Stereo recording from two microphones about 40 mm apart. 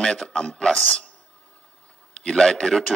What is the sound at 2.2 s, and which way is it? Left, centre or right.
Speech, centre.